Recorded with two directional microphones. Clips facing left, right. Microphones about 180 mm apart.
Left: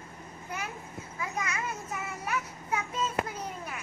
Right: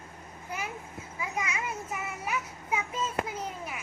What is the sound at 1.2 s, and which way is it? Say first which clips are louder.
Speech: right 1 dB; 10° right (ahead or behind).